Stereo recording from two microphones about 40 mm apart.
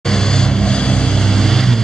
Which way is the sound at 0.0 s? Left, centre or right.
Centre.